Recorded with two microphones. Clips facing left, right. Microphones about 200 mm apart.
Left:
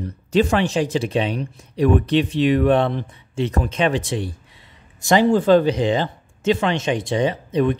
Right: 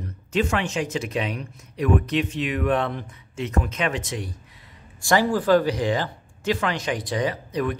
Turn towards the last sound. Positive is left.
turn(degrees=25)  # may be behind; listen again after turning